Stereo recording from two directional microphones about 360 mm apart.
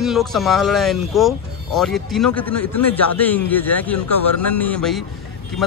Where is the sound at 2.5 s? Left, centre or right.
Left.